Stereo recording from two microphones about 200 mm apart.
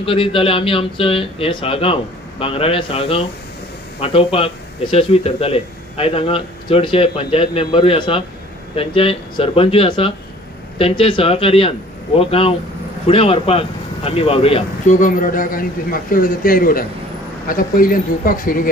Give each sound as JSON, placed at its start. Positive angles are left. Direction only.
{"t": 0.0, "sound": "a man's voice", "side_deg": 25}